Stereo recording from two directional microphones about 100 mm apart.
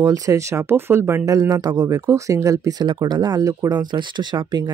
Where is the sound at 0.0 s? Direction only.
35° right (ahead or behind).